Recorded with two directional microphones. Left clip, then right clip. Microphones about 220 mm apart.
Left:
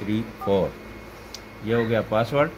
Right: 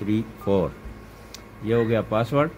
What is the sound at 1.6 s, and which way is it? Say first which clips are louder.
Speech: right 1 dB; 25° right (ahead or behind).